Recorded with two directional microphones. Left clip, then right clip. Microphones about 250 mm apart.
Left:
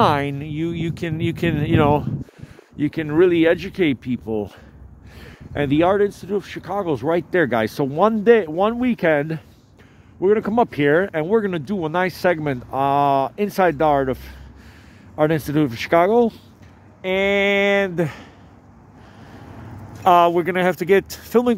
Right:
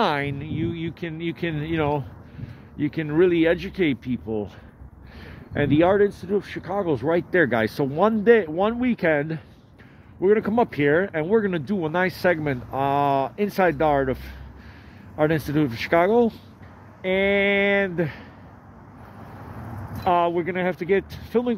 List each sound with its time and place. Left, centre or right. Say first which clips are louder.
0.0 s speech: left 5 dB; left
5.2 s speech: left 1 dB; centre
20.0 s speech: left 7 dB; left